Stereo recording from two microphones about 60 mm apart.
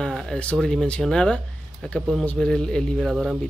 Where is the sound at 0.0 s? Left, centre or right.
Centre.